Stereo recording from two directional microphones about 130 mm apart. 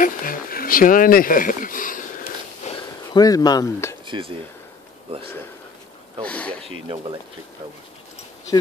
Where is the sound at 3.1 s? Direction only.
30° left (ahead or behind).